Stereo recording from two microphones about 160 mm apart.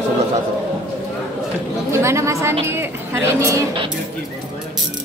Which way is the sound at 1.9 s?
15° right (ahead or behind).